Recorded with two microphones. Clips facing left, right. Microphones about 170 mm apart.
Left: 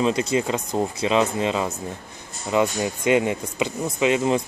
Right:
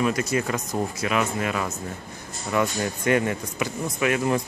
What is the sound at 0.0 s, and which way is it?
Speech, 25° left (ahead or behind).